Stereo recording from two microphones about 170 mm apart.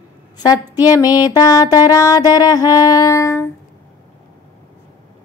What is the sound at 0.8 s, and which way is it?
Speech, 20° left (ahead or behind).